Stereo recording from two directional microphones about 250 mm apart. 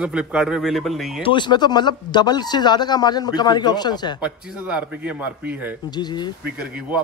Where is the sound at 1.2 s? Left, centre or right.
Centre.